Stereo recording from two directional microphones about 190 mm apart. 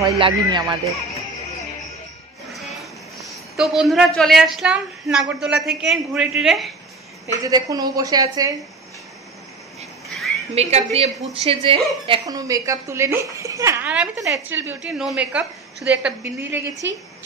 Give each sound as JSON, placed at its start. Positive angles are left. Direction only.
{"t": 0.2, "sound": "a woman's voice", "side_deg": -25}
{"t": 2.8, "sound": "speech", "side_deg": 0}
{"t": 7.4, "sound": "a woman's voice", "side_deg": -20}
{"t": 10.0, "sound": "a sound", "side_deg": 0}
{"t": 10.5, "sound": "a woman's voice", "side_deg": -35}